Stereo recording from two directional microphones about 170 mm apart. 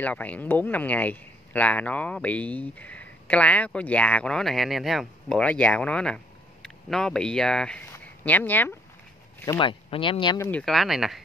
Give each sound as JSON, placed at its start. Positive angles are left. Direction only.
{"t": 0.0, "sound": "speech", "side_deg": 10}
{"t": 9.6, "sound": "speech", "side_deg": 30}
{"t": 10.5, "sound": "speech", "side_deg": 0}